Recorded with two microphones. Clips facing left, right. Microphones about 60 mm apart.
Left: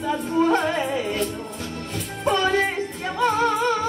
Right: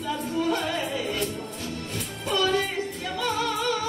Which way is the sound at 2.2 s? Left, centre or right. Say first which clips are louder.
Left 4 dB; left.